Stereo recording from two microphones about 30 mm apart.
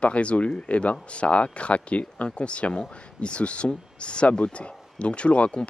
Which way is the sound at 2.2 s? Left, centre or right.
Left.